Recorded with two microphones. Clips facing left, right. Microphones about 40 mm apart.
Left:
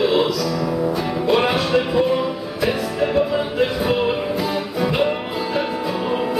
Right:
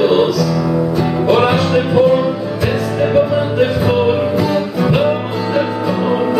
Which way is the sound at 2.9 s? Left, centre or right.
Centre.